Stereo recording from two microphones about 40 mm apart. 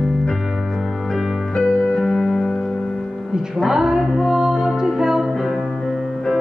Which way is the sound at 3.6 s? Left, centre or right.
Centre.